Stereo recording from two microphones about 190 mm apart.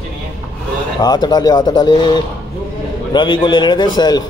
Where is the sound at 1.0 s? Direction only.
20° left (ahead or behind).